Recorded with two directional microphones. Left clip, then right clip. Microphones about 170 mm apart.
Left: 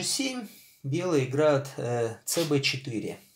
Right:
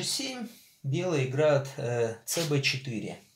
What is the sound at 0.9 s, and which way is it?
Speech, 40° left (ahead or behind).